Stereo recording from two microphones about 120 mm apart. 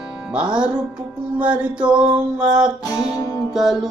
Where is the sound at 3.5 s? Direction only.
Centre (ahead or behind).